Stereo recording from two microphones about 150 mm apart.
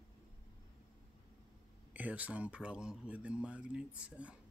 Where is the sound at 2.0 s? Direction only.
10° right (ahead or behind).